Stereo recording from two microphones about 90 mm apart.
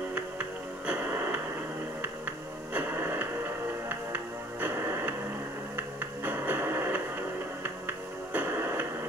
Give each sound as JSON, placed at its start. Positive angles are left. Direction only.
{"t": 0.1, "sound": "music", "side_deg": -15}
{"t": 2.7, "sound": "radio", "side_deg": -20}
{"t": 4.1, "sound": "music", "side_deg": -20}